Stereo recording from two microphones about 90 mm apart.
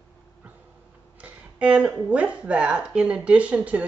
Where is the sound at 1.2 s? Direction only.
15° right (ahead or behind).